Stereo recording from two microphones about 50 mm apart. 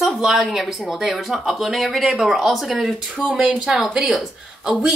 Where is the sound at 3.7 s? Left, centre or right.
Centre.